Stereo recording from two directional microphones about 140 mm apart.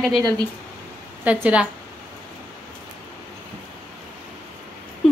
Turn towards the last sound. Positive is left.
turn(degrees=5)  # may be behind; listen again after turning